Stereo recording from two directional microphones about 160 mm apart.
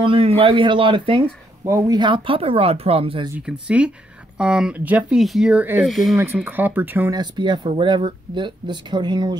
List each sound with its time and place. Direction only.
0.0 s a man's voice: 35° right (ahead or behind)
1.7 s speech: 20° right (ahead or behind)
3.3 s speech: 5° right (ahead or behind)
6.1 s speech: 15° right (ahead or behind)
7.1 s speech: 25° right (ahead or behind)